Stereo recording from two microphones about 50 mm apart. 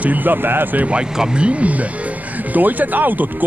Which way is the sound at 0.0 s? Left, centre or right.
Right.